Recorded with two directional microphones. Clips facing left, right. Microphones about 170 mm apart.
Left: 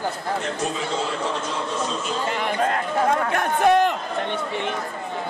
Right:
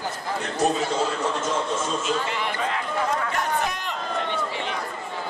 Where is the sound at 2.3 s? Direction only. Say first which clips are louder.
Left 4 dB; 50° left (ahead or behind).